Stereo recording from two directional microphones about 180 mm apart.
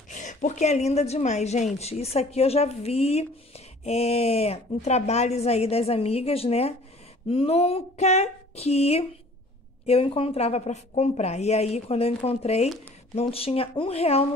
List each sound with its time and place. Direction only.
0.2 s speech: 45° left (ahead or behind)